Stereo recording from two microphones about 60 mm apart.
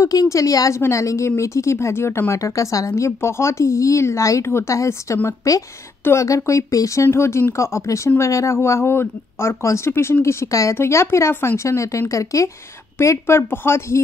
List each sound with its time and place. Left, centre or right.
0.0 s a woman's voice: left
0.7 s speech: left
3.2 s speech: left
4.5 s speech: left
4.7 s speech: left
7.1 s speech: left
10.2 s speech: left
10.7 s speech: left
13.0 s speech: left